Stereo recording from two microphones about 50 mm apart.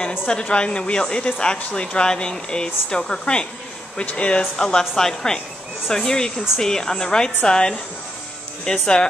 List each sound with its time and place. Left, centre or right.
0.3 s speech: centre